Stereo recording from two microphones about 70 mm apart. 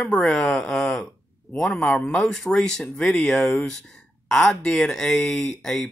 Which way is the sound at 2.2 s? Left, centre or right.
Centre.